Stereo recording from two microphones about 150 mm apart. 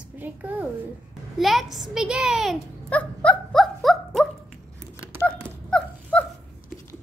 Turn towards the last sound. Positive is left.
turn(degrees=10)  # may be behind; listen again after turning